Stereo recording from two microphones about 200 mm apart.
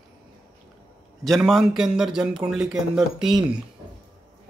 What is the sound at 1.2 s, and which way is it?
Speech, centre (ahead or behind).